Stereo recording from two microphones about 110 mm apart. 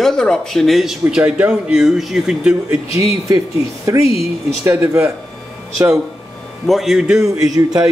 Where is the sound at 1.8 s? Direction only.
5° right (ahead or behind).